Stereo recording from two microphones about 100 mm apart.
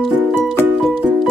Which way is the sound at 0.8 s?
5° left (ahead or behind).